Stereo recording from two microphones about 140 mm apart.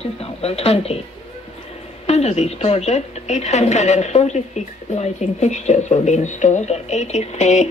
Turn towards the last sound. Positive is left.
turn(degrees=55)  # may be behind; listen again after turning